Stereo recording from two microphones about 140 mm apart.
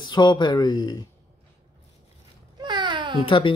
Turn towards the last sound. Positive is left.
turn(degrees=40)  # may be behind; listen again after turning